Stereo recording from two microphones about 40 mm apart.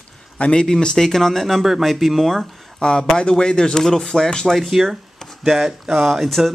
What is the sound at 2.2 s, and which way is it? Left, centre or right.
Speech, centre.